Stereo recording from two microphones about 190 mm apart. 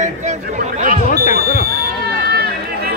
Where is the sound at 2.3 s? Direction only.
55° right (ahead or behind).